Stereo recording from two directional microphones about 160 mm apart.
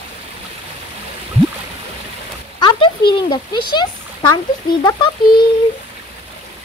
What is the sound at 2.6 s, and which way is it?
Speech, 30° left (ahead or behind).